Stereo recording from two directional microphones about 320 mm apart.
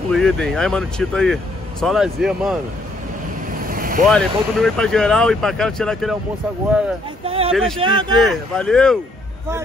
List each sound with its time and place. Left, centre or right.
0.1 s speech: centre
3.6 s vehicle: right
4.0 s speech: centre
7.2 s speech: centre
7.5 s speech: centre
7.8 s speech: centre
8.2 s speech: centre